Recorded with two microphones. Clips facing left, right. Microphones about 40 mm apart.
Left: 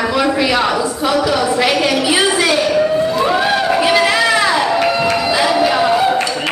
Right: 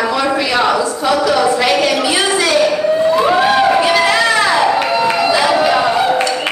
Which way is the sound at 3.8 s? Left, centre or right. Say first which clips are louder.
Right 1 dB; centre.